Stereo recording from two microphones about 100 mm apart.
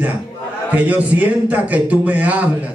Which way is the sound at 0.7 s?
15° right (ahead or behind).